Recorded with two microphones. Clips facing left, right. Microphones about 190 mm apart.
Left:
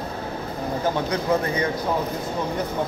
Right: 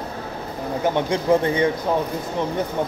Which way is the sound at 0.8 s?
25° right (ahead or behind).